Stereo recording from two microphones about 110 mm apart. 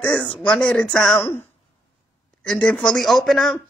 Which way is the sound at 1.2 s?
20° left (ahead or behind).